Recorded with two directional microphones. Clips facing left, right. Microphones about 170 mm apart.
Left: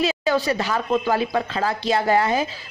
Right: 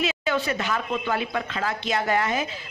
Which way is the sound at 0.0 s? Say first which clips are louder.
Left 4 dB; 35° left (ahead or behind).